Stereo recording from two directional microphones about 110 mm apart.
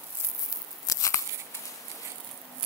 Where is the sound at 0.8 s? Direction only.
30° left (ahead or behind).